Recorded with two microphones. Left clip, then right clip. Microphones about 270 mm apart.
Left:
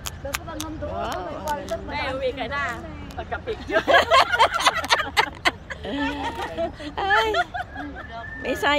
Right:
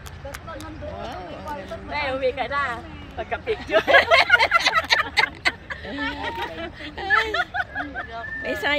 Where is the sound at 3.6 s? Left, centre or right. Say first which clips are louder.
Right 1 dB; centre.